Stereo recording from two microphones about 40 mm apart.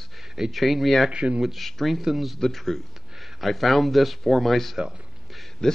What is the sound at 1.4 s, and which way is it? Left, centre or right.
A man's voice, centre.